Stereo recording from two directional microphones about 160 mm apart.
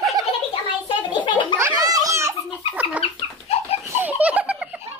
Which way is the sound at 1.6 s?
20° right (ahead or behind).